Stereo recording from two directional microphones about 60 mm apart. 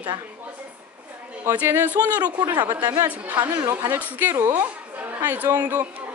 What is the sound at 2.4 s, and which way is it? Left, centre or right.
Speech, right.